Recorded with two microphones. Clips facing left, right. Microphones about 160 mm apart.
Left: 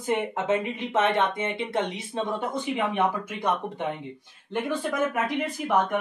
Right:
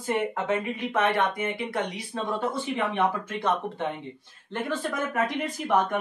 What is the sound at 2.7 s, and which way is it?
Speech, 15° left (ahead or behind).